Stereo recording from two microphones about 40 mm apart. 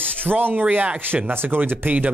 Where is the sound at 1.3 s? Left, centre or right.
Right.